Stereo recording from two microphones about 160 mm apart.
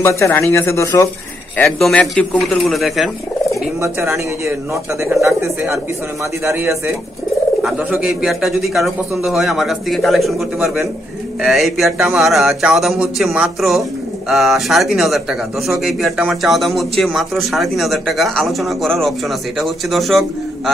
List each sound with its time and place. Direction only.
0.0 s speech: 15° left (ahead or behind)
1.6 s speech: 5° left (ahead or behind)
3.8 s speech: 15° right (ahead or behind); by 20.7 s centre (ahead or behind)